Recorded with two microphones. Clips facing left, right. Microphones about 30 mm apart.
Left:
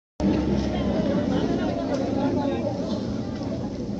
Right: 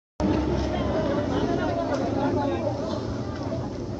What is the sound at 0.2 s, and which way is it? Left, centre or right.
Vehicle, centre.